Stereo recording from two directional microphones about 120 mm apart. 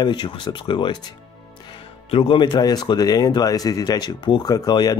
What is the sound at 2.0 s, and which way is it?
Speech, 50° left (ahead or behind).